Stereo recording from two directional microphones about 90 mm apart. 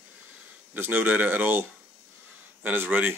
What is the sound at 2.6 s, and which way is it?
Speech, 20° right (ahead or behind).